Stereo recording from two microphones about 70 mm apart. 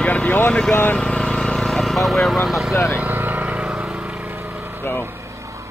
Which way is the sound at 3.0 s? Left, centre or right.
Right.